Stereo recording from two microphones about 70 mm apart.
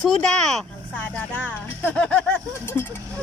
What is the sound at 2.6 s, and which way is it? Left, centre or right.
Speech, left.